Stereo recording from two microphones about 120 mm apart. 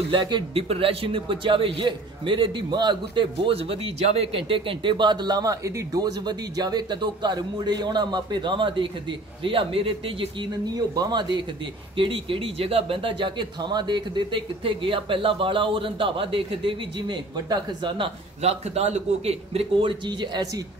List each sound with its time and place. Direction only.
0.1 s a man's voice: 45° right (ahead or behind)
10.7 s a man's voice: 35° right (ahead or behind)
12.0 s speech: 50° right (ahead or behind)
18.4 s speech: 65° right (ahead or behind); by 20.6 s 35° right (ahead or behind)